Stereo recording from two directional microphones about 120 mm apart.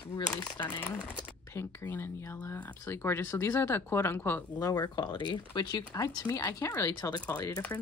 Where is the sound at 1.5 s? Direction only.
15° left (ahead or behind).